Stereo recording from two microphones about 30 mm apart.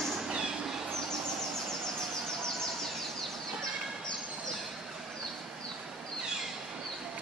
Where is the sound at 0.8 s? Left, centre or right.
Centre.